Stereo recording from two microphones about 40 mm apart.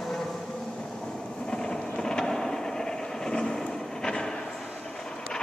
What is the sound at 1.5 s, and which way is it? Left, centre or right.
Vehicle, centre.